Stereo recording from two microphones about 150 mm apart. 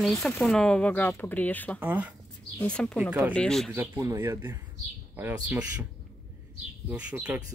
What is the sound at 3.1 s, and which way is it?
Speech, 10° right (ahead or behind).